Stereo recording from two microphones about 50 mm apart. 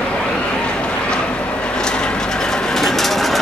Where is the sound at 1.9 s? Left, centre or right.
Centre.